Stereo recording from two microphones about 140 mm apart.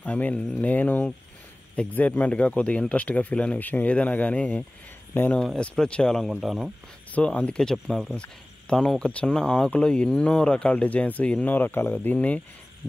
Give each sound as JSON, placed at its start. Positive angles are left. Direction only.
{"t": 0.0, "sound": "speech", "side_deg": 10}
{"t": 5.4, "sound": "speech", "side_deg": 5}
{"t": 7.1, "sound": "speech", "side_deg": 10}